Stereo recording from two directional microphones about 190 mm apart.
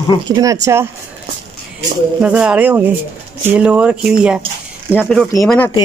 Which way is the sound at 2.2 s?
5° right (ahead or behind).